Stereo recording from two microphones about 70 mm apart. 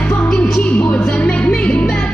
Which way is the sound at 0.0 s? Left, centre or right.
Centre.